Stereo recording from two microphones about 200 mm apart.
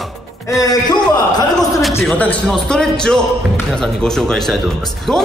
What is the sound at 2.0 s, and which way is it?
A man's voice, 5° left (ahead or behind).